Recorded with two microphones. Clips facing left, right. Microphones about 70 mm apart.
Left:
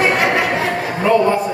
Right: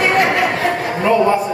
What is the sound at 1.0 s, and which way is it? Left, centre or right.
Speech, centre.